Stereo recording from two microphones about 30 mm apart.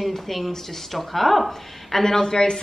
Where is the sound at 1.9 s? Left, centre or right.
Centre.